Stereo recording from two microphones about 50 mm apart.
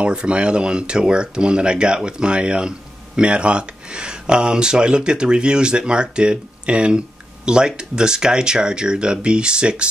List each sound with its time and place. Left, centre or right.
0.0 s speech: right